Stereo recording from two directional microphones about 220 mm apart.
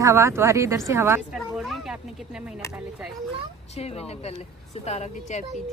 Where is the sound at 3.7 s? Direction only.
30° left (ahead or behind).